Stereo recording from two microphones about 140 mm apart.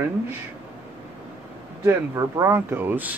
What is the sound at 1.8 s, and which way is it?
Speech, 20° right (ahead or behind).